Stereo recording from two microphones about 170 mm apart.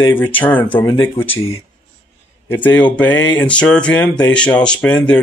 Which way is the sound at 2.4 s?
10° left (ahead or behind).